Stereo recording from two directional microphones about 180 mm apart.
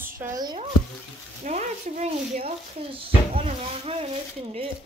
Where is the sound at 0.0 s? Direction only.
15° right (ahead or behind).